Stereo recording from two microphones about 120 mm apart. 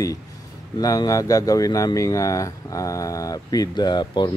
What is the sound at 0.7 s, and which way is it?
A man's voice, 30° left (ahead or behind).